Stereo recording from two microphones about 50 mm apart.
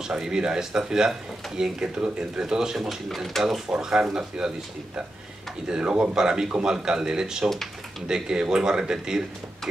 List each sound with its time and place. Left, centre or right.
0.1 s speech: centre
2.4 s speech: centre
3.4 s speech: centre
5.7 s speech: right